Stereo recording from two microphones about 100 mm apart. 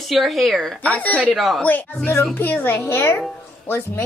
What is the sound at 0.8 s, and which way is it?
Speech, 15° left (ahead or behind).